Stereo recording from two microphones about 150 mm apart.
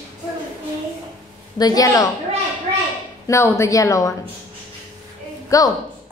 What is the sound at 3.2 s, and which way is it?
Speech, 20° left (ahead or behind).